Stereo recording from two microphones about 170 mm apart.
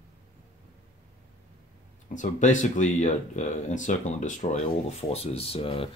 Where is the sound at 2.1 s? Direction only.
45° left (ahead or behind).